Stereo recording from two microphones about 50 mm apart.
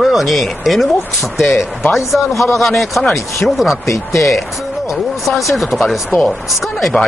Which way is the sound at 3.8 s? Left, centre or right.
Left.